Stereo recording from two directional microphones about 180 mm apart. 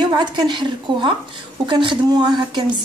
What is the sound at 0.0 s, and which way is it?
A woman's voice, 25° right (ahead or behind).